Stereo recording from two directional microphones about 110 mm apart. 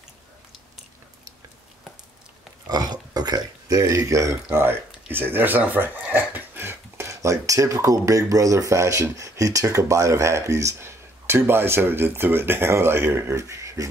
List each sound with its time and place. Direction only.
2.7 s speech: 35° right (ahead or behind)